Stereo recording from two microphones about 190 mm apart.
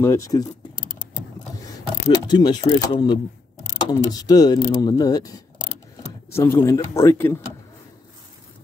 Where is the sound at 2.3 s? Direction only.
20° left (ahead or behind).